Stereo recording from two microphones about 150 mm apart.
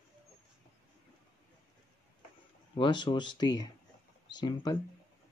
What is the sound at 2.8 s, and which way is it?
Speech, 30° left (ahead or behind).